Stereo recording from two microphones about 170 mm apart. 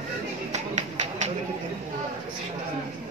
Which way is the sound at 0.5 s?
40° right (ahead or behind).